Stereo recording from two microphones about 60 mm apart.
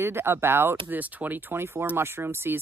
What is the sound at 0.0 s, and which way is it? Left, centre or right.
Speech, right.